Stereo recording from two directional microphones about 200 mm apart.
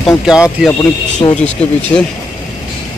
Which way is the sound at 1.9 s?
20° left (ahead or behind).